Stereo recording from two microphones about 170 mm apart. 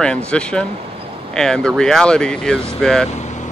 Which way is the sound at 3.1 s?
45° left (ahead or behind).